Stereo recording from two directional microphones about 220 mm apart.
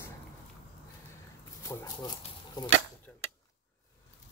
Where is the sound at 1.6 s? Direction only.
15° left (ahead or behind).